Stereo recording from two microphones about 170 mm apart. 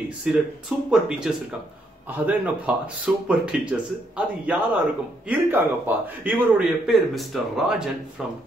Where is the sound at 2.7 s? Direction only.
5° right (ahead or behind).